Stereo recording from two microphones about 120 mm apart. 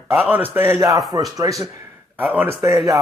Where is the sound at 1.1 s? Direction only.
30° right (ahead or behind).